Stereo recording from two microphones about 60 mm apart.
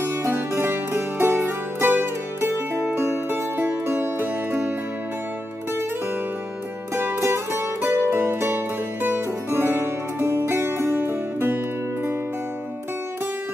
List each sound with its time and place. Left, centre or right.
0.0 s music: right
7.0 s music: right